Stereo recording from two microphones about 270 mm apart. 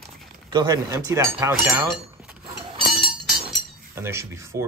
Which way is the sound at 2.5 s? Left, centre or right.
Right.